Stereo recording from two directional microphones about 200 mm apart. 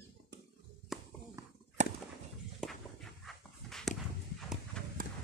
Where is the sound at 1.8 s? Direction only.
35° right (ahead or behind).